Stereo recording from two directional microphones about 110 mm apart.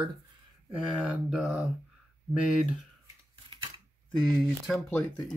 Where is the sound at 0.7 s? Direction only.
10° right (ahead or behind).